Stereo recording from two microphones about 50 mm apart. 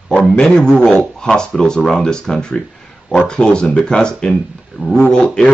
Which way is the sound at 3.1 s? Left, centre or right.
Left.